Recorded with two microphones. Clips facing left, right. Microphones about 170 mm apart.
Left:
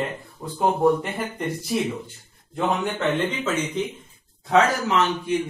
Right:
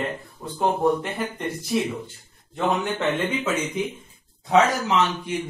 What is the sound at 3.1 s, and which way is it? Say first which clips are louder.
Speech: even; 10° right (ahead or behind).